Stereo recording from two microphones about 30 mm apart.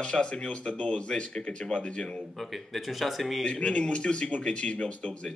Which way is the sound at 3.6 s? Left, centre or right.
Left.